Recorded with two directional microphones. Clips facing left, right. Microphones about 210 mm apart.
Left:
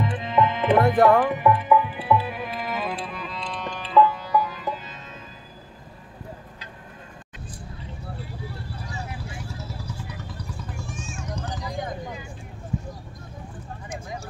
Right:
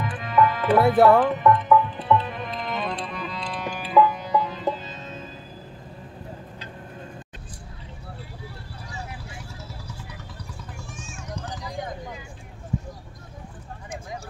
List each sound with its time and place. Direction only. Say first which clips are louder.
0.0 s tabla: right 1 dB; 25° left (ahead or behind)
1.1 s music: right 1 dB; 15° left (ahead or behind); by 5.2 s 25° right (ahead or behind)